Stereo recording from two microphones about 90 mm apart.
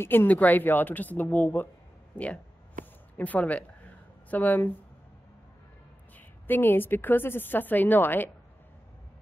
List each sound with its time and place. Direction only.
0.0 s a woman's voice: 25° left (ahead or behind)
2.1 s a sound: 15° left (ahead or behind)
4.3 s a woman's voice: 20° left (ahead or behind)
6.1 s a woman's voice: 20° left (ahead or behind)